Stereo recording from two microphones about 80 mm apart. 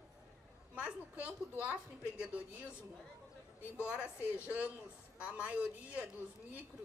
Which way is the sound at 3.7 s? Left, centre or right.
Left.